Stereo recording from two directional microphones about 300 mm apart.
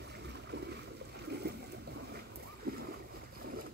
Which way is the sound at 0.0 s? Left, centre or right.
Right.